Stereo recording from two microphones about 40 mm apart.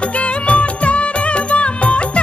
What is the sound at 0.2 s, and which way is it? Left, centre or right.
Music of bollywood, left.